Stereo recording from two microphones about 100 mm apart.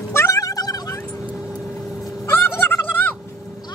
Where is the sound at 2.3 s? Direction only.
20° left (ahead or behind).